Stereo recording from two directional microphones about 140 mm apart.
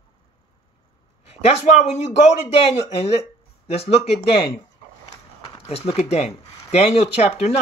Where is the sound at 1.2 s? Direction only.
45° left (ahead or behind).